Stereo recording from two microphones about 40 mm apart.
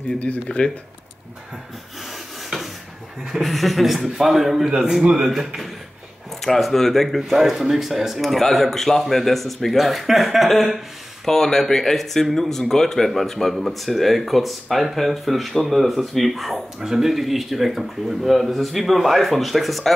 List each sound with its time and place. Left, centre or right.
0.2 s speech: left
3.3 s speech: centre
6.4 s speech: centre
11.2 s speech: centre